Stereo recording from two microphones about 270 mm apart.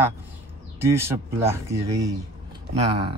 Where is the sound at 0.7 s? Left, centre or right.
Centre.